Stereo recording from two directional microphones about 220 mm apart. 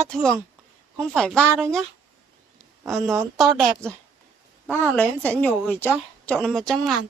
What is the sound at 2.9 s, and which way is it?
Speech, 10° right (ahead or behind).